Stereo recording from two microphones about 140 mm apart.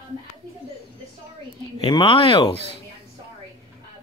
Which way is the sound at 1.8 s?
40° left (ahead or behind).